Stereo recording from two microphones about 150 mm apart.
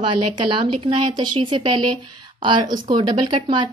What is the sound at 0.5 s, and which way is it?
A woman's voice, 35° right (ahead or behind).